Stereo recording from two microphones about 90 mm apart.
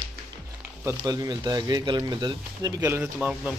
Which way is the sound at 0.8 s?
45° right (ahead or behind).